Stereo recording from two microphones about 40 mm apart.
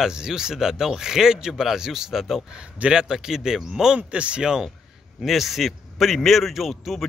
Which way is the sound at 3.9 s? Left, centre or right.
Right.